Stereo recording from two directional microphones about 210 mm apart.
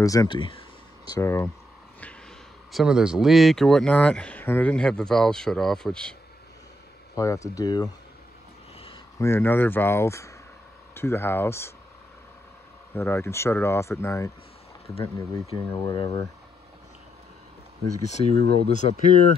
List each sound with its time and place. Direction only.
0.0 s speech: 15° left (ahead or behind)
2.7 s speech: 5° right (ahead or behind)
7.2 s speech: 15° left (ahead or behind)
9.2 s speech: 10° left (ahead or behind)
12.9 s speech: 15° left (ahead or behind)
18.0 s speech: 30° left (ahead or behind)